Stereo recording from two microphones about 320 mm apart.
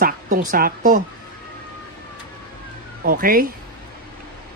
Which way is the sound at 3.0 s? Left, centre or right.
Right.